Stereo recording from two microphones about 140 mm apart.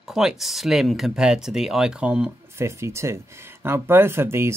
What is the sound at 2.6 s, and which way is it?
Speech, 20° right (ahead or behind).